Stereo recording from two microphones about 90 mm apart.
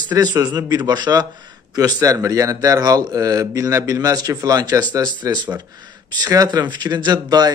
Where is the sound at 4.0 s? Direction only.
45° right (ahead or behind).